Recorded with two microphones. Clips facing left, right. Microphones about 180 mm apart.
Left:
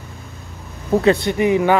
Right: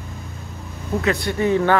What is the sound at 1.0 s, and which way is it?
Speech, 25° left (ahead or behind).